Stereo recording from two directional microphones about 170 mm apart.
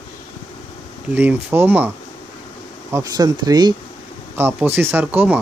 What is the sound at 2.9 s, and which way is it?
Speech, 20° right (ahead or behind).